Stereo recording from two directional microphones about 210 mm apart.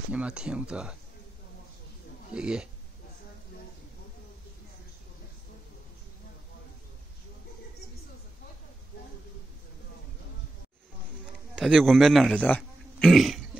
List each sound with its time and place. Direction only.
0.1 s speech: 5° right (ahead or behind)
2.3 s speech: 5° right (ahead or behind)
11.5 s speech: centre (ahead or behind)